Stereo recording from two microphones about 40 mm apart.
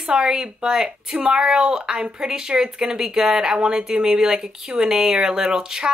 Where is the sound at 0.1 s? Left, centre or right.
Centre.